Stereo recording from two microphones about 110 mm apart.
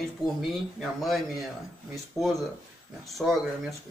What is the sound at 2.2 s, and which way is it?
Speech, 30° left (ahead or behind).